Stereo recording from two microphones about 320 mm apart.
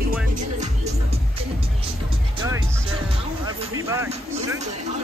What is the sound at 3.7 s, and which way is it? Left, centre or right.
Speech, centre.